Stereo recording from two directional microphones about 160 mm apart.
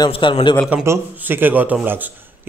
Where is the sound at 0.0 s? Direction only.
30° left (ahead or behind).